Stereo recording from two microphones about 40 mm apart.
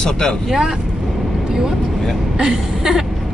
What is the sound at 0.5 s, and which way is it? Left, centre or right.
Speech, centre.